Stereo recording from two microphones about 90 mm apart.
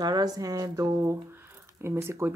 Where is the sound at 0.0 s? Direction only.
45° right (ahead or behind).